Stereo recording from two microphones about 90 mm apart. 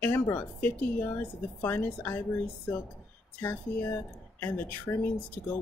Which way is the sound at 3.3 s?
20° left (ahead or behind).